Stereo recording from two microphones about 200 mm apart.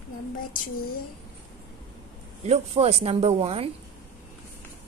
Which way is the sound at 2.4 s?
30° right (ahead or behind).